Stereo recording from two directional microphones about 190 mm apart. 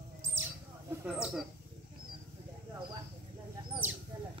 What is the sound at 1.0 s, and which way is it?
Speech, 5° right (ahead or behind).